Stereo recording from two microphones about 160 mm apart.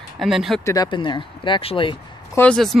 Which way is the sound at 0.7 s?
25° left (ahead or behind).